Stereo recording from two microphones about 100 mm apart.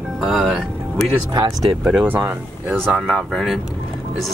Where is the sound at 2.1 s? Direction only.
20° right (ahead or behind).